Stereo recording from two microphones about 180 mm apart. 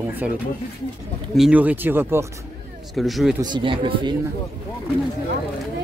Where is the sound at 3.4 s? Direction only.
25° right (ahead or behind).